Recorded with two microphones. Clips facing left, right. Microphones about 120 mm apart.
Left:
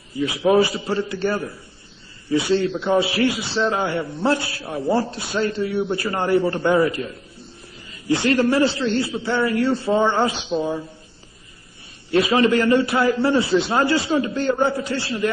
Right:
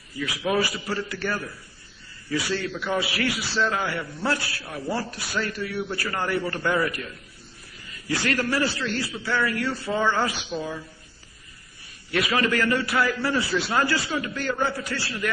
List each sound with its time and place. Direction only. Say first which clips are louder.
0.1 s a man's voice: left 8 dB; 25° left (ahead or behind)
12.1 s a man's voice: left 7 dB; 25° left (ahead or behind)